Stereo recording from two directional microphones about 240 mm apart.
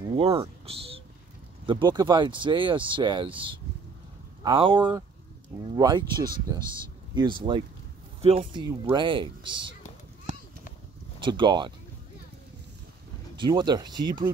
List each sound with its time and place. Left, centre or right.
0.1 s a sound: right
1.7 s speech: centre
11.1 s speech: centre
13.4 s speech: centre